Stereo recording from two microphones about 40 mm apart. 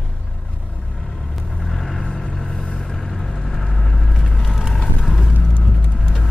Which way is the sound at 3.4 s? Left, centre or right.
Centre.